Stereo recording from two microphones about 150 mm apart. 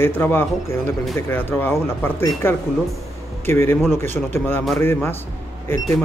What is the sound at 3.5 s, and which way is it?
Speech, 15° left (ahead or behind).